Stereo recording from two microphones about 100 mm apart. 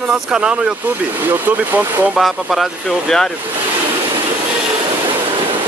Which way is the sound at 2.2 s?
Centre (ahead or behind).